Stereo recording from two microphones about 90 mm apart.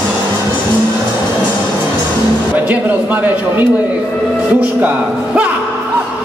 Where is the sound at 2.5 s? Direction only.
15° right (ahead or behind).